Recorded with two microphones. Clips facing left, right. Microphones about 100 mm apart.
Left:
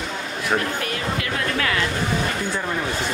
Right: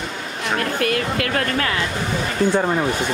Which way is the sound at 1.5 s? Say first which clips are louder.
Right 1 dB; 35° right (ahead or behind).